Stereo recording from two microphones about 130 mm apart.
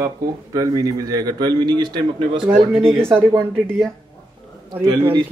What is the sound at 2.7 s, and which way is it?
Speech, 5° left (ahead or behind).